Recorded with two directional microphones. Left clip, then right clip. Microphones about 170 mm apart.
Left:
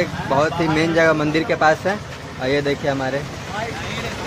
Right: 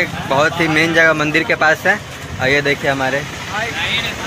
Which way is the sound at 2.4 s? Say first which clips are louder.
Right 5 dB; centre (ahead or behind).